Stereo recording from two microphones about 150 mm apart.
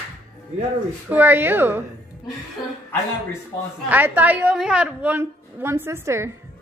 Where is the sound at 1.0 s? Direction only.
15° right (ahead or behind).